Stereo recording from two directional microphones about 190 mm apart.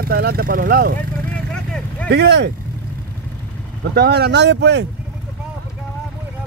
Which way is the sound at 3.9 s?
55° right (ahead or behind).